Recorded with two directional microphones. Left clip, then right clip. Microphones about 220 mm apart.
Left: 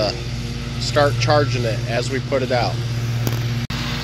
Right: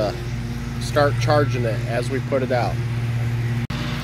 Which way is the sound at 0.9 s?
Centre (ahead or behind).